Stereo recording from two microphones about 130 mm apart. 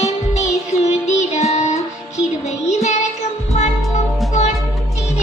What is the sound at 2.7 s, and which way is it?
Child singing, 60° left (ahead or behind).